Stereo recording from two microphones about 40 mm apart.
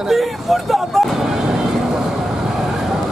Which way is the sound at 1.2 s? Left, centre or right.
Centre.